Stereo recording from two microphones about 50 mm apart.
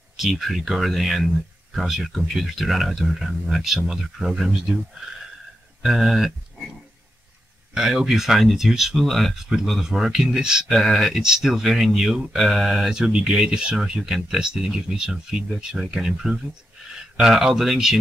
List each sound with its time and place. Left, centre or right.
0.2 s speech: centre
5.8 s speech: centre
7.7 s speech: centre
9.5 s speech: centre
10.7 s speech: centre